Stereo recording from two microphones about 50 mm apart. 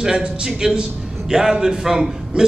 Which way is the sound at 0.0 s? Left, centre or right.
Centre.